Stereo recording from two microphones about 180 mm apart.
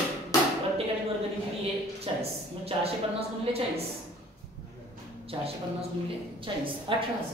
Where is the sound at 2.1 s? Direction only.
30° right (ahead or behind).